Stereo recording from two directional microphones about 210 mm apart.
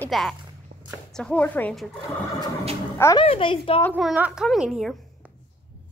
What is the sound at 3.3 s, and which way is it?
Speech, 25° left (ahead or behind).